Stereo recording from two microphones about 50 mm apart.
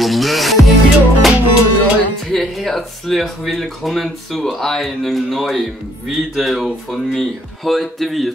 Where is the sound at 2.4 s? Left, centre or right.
Centre.